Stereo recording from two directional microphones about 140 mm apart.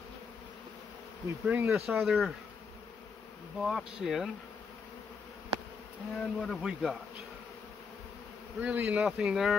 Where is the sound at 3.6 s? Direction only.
5° right (ahead or behind).